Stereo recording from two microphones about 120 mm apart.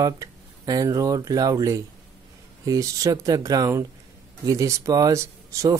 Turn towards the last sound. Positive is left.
turn(degrees=-25)  # may be behind; listen again after turning